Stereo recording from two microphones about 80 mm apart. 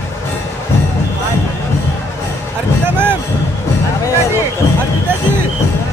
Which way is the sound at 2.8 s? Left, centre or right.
Right.